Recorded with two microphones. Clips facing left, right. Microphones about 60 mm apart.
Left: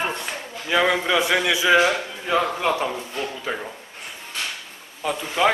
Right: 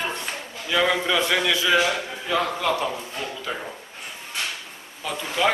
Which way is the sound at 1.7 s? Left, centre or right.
Left.